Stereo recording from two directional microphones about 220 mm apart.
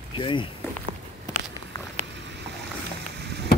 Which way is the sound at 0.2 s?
20° left (ahead or behind).